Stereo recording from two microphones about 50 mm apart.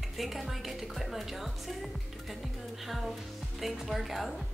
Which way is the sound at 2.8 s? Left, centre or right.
Centre.